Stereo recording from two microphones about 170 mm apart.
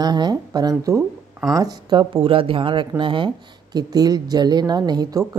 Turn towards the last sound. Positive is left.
turn(degrees=-20)  # may be behind; listen again after turning